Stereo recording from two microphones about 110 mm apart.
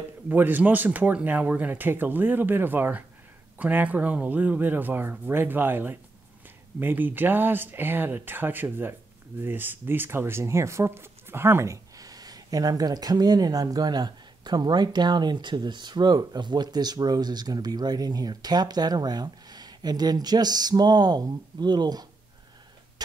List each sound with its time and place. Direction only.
0.3 s speech: 15° right (ahead or behind); by 22.0 s 40° right (ahead or behind)